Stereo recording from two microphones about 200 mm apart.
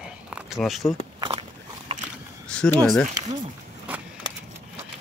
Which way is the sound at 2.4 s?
5° left (ahead or behind).